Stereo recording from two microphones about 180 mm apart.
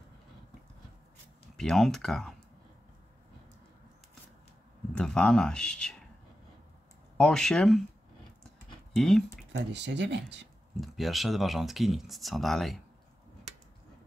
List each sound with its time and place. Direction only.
1.6 s speech: centre (ahead or behind)
4.9 s speech: 5° left (ahead or behind)
7.2 s speech: 5° left (ahead or behind)
8.9 s speech: centre (ahead or behind)
9.5 s speech: 70° right (ahead or behind)
10.8 s speech: centre (ahead or behind)